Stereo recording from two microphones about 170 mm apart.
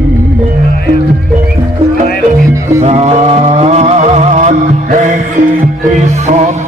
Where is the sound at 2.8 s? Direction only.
40° right (ahead or behind).